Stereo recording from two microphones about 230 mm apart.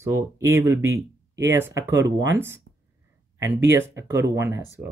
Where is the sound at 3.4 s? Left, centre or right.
Centre.